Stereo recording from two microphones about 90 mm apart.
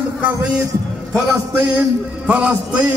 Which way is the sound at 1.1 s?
15° right (ahead or behind).